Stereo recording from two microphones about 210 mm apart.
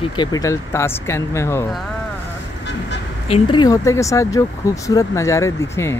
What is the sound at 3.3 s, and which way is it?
Speech, 20° left (ahead or behind).